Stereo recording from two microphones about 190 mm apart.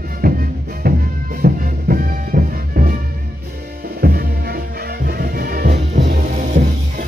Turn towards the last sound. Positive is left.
turn(degrees=-55)  # may be behind; listen again after turning